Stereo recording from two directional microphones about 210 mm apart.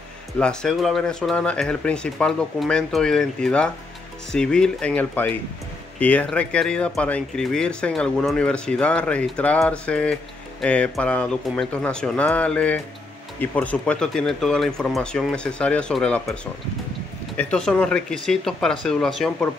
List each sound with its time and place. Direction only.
0.4 s speech: 5° left (ahead or behind)
17.4 s speech: 5° left (ahead or behind)